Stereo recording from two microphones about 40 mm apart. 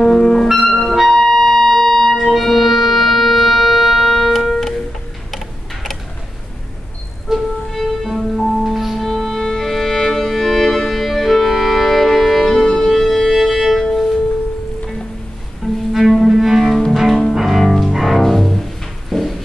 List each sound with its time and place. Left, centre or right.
0.2 s music: centre
0.7 s clarinet: centre
1.0 s music: centre
7.3 s music: centre
7.7 s music: centre
15.9 s cello: centre
16.9 s double bass: centre
17.3 s cello: centre
17.9 s double bass: centre